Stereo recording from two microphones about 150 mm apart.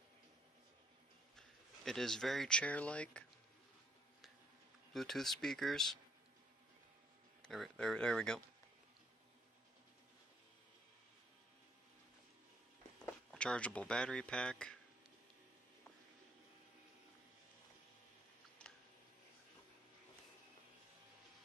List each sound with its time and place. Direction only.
1.9 s speech: 5° left (ahead or behind)
4.9 s speech: centre (ahead or behind)
7.4 s speech: centre (ahead or behind)
13.0 s speech: 5° left (ahead or behind)
18.6 s a sound: 10° left (ahead or behind)